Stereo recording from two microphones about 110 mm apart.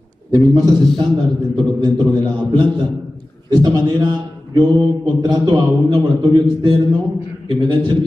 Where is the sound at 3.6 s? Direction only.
35° right (ahead or behind).